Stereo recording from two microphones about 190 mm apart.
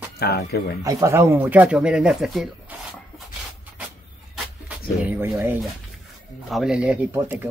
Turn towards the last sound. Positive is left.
turn(degrees=-10)  # may be behind; listen again after turning